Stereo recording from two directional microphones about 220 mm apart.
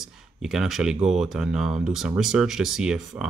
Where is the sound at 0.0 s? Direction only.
Centre (ahead or behind).